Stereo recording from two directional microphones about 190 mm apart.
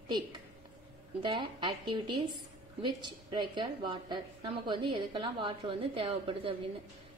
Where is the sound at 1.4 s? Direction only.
25° right (ahead or behind).